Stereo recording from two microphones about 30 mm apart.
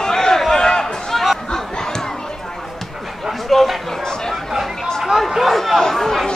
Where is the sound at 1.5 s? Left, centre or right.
Left.